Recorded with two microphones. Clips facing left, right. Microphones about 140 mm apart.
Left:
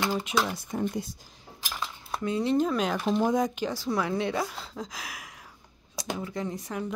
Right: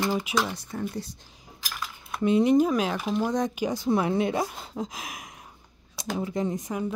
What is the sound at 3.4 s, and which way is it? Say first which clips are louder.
Speech: right 1 dB; 10° right (ahead or behind).